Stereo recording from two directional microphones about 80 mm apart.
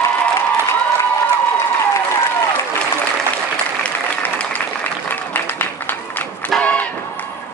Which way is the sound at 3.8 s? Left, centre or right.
Centre.